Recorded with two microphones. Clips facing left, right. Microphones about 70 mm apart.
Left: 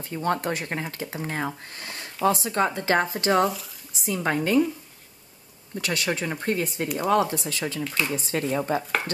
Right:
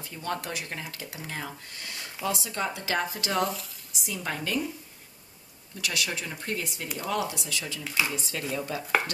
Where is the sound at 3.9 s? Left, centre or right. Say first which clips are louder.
Left 8 dB; left.